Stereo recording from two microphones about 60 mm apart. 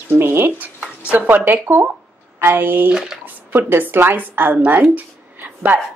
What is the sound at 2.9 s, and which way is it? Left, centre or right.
Speech, centre.